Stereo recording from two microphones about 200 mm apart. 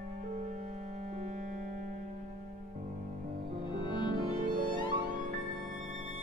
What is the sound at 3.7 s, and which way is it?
Music, 25° left (ahead or behind).